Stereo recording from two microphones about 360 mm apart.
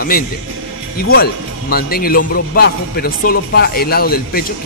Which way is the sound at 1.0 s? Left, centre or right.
Left.